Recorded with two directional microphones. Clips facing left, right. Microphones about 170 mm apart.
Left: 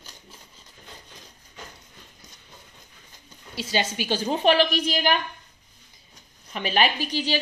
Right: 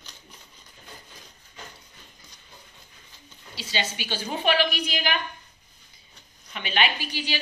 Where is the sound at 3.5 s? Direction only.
45° left (ahead or behind).